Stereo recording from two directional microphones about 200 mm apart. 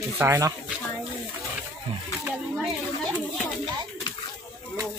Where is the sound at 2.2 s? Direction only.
Centre (ahead or behind).